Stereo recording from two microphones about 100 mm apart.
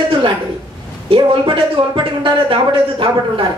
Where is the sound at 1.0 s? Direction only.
60° right (ahead or behind).